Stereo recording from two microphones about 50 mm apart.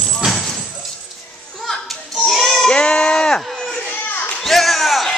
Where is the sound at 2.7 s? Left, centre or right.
Centre.